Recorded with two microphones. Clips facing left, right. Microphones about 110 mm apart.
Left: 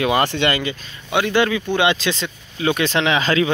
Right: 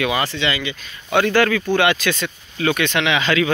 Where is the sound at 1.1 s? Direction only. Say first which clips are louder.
Right 2 dB; 15° left (ahead or behind).